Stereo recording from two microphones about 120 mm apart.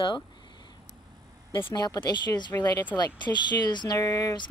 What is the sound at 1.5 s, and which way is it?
Speech, 40° left (ahead or behind).